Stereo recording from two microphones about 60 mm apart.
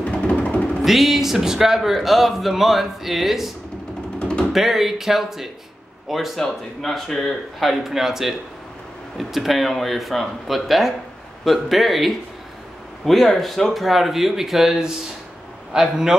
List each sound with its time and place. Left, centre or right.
0.0 s music: left
0.8 s a man's voice: centre
4.2 s music: centre
4.5 s a man's voice: centre